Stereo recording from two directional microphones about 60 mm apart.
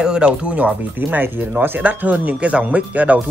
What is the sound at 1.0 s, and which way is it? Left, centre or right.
Speech, right.